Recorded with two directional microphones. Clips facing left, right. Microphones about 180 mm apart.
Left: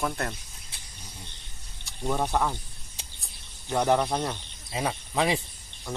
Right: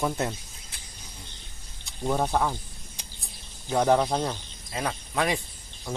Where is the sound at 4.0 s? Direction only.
15° right (ahead or behind).